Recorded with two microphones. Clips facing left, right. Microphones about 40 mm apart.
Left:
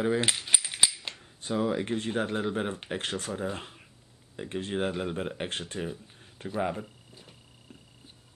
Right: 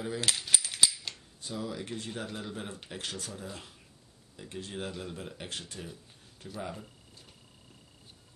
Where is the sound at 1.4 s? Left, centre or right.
Left; by 7.3 s centre.